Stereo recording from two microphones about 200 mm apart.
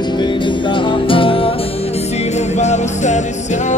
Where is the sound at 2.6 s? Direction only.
35° left (ahead or behind).